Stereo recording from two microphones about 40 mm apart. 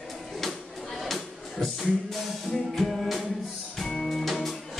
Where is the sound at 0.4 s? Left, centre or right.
Centre.